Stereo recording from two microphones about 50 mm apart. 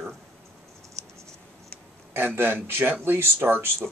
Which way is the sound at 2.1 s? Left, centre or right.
Right.